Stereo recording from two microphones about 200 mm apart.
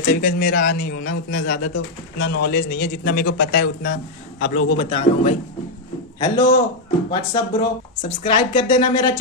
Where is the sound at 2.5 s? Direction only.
50° left (ahead or behind).